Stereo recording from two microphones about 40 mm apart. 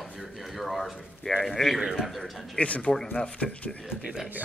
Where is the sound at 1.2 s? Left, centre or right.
Centre.